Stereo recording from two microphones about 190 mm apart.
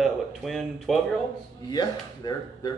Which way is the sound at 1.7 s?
20° left (ahead or behind).